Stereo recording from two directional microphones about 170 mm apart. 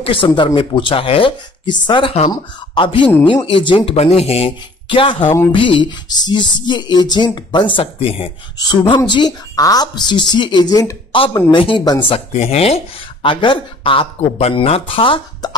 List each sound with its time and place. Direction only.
0.0 s a woman's voice: 30° left (ahead or behind)